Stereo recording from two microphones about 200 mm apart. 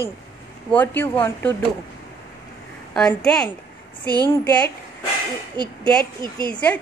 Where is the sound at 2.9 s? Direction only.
5° left (ahead or behind).